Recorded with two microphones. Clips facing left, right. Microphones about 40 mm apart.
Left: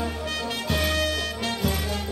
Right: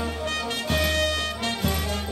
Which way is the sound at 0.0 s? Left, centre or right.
Centre.